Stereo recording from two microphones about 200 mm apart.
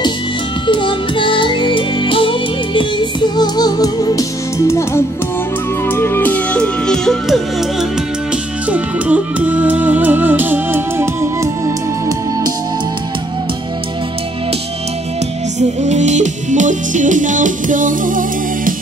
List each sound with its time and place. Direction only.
0.7 s music: 25° left (ahead or behind)
5.9 s speech: 10° left (ahead or behind)
8.6 s music: 5° right (ahead or behind)
15.8 s music: 35° right (ahead or behind)